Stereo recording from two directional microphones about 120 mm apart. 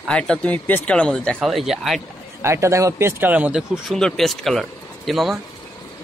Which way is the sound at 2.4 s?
25° right (ahead or behind).